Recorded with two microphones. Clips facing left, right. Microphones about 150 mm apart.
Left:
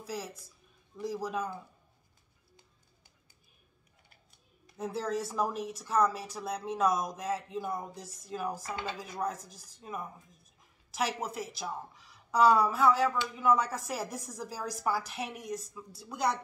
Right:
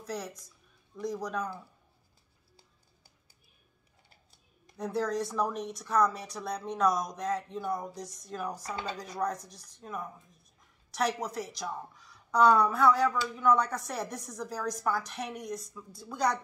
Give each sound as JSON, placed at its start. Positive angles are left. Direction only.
{"t": 0.0, "sound": "speech", "side_deg": 5}
{"t": 4.7, "sound": "speech", "side_deg": 5}
{"t": 8.6, "sound": "speech", "side_deg": -35}
{"t": 9.2, "sound": "speech", "side_deg": 5}